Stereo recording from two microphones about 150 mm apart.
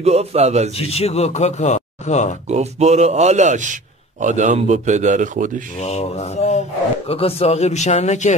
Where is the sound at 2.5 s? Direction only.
50° right (ahead or behind).